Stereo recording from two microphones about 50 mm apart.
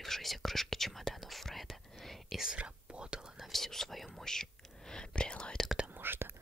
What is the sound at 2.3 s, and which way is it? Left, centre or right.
Speech, centre.